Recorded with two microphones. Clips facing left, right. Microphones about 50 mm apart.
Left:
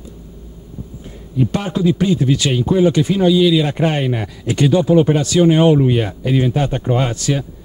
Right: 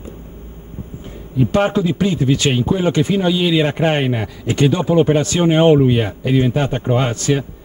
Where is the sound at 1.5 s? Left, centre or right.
Right.